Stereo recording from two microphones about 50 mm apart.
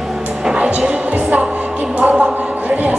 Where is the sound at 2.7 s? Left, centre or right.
Right.